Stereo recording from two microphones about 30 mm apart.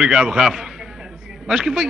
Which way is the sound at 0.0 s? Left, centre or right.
Right.